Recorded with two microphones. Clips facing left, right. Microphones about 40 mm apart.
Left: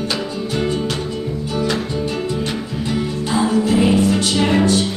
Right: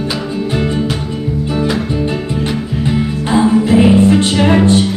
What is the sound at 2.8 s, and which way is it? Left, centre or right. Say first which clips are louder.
Music: right 5 dB; right.